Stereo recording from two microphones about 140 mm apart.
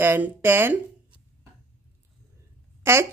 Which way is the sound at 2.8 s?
20° right (ahead or behind).